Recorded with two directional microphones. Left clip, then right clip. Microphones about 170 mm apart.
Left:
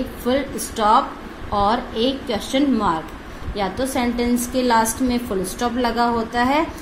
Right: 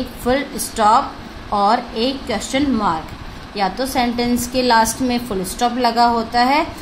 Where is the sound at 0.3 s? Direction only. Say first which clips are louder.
Right 3 dB; 30° right (ahead or behind).